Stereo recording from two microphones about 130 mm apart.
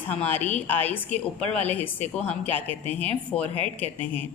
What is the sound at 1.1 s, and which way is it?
Speech, 50° right (ahead or behind).